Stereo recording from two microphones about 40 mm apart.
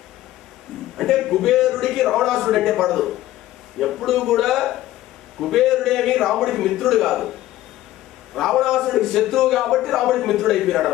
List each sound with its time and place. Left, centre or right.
0.9 s a man's voice: centre
8.4 s a man's voice: centre